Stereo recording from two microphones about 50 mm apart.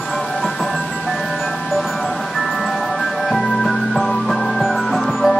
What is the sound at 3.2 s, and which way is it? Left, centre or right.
Music, centre.